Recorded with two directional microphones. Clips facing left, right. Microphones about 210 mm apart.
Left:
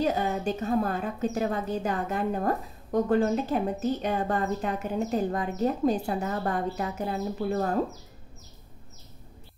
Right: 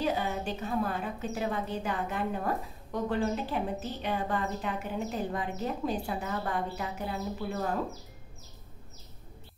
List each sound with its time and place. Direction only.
0.0 s a woman's voice: 45° left (ahead or behind)